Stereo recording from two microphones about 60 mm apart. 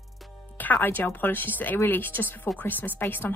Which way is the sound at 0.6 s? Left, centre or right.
Left.